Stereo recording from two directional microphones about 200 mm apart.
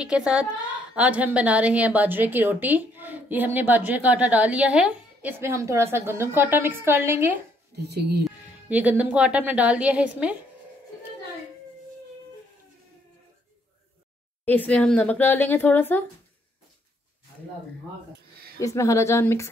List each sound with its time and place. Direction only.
0.0 s a woman's voice: 5° right (ahead or behind)
7.7 s speech: 55° right (ahead or behind)
8.2 s a woman's voice: 5° right (ahead or behind)
14.4 s speech: 10° left (ahead or behind)
18.6 s speech: 15° left (ahead or behind)